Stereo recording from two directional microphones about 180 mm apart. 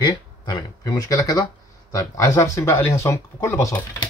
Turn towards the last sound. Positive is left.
turn(degrees=15)  # may be behind; listen again after turning